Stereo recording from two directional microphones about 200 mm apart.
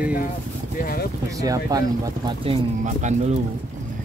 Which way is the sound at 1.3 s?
15° right (ahead or behind).